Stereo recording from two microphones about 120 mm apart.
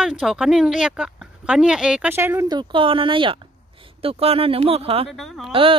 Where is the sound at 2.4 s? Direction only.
40° right (ahead or behind).